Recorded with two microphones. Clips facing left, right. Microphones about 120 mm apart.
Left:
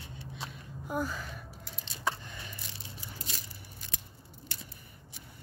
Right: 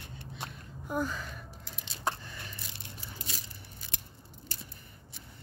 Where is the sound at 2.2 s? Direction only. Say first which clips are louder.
Even; 15° left (ahead or behind).